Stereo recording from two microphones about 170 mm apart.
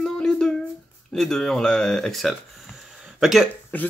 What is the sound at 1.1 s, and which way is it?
Speech, 5° left (ahead or behind).